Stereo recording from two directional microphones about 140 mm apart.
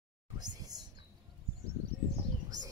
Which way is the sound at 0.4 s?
30° right (ahead or behind).